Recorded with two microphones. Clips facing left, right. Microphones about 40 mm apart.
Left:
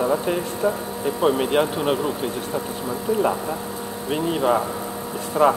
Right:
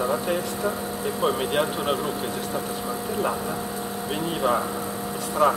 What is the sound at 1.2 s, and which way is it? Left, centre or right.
Speech, centre.